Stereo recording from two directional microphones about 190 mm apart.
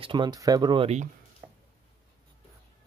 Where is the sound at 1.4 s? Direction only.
15° right (ahead or behind).